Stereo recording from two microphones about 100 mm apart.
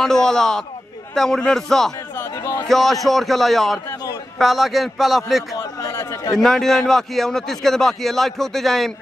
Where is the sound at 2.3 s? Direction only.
35° left (ahead or behind).